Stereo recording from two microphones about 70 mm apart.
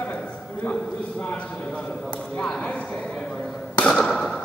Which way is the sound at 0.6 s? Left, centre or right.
Centre.